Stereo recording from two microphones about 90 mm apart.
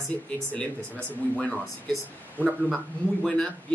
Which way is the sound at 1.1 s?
15° left (ahead or behind).